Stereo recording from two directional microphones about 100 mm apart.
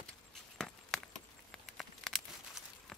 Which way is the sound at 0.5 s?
5° left (ahead or behind).